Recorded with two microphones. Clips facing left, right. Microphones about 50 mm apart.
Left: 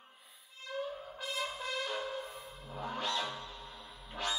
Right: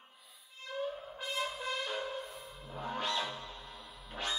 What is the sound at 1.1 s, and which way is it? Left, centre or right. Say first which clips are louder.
Music: right 1 dB; right.